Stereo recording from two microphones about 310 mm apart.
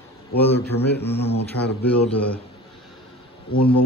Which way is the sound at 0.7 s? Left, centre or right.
Left.